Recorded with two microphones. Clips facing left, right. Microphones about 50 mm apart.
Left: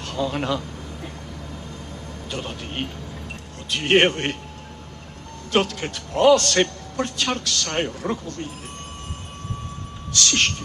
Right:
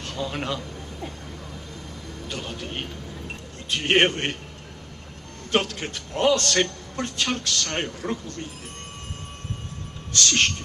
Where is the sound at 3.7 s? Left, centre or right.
Right.